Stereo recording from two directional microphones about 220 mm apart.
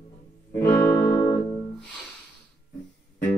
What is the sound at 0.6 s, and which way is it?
Music, 15° left (ahead or behind).